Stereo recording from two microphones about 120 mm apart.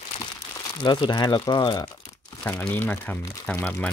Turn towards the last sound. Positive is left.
turn(degrees=15)  # may be behind; listen again after turning